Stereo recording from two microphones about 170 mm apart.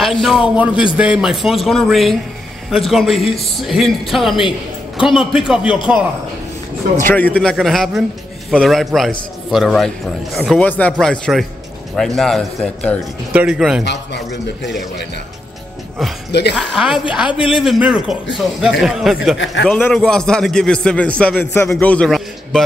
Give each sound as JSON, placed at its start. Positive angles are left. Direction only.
{"t": 0.0, "sound": "a man's voice", "side_deg": 0}
{"t": 7.0, "sound": "a man's voice", "side_deg": 10}
{"t": 13.8, "sound": "a man's voice", "side_deg": 90}
{"t": 16.3, "sound": "a woman's voice", "side_deg": 80}
{"t": 16.5, "sound": "a man's voice", "side_deg": 0}
{"t": 17.3, "sound": "a man's voice", "side_deg": 30}
{"t": 17.6, "sound": "a man's voice", "side_deg": -5}
{"t": 19.3, "sound": "a man's voice", "side_deg": 90}
{"t": 19.6, "sound": "a man's voice", "side_deg": 5}